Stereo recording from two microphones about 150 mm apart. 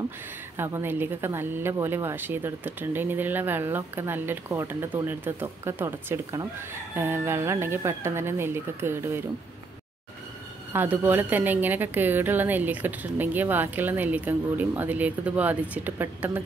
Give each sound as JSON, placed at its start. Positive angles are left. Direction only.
{"t": 0.6, "sound": "speech", "side_deg": -15}
{"t": 10.7, "sound": "speech", "side_deg": -15}